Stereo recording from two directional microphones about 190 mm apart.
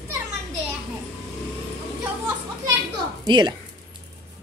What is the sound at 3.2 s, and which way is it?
Speech, 20° right (ahead or behind).